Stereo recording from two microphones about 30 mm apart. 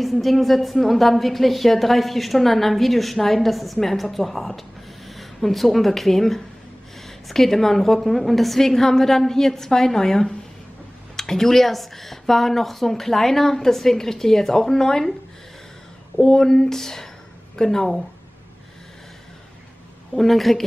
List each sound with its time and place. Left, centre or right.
0.0 s a woman's voice: centre
8.5 s a woman's voice: centre
16.3 s a woman's voice: centre
20.2 s a woman's voice: centre